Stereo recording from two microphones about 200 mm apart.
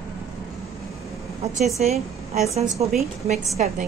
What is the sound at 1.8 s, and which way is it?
A woman's voice, 35° right (ahead or behind).